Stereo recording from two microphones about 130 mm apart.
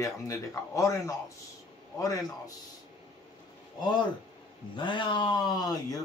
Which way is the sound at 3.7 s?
35° left (ahead or behind).